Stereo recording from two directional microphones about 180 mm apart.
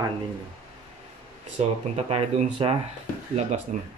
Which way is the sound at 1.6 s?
40° right (ahead or behind).